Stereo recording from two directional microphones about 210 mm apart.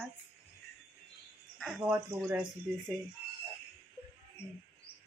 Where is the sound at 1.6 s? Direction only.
5° right (ahead or behind).